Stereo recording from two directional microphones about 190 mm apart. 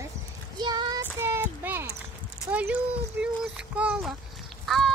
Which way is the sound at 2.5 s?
5° right (ahead or behind).